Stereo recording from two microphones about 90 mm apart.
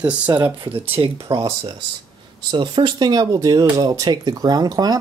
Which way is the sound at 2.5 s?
60° right (ahead or behind).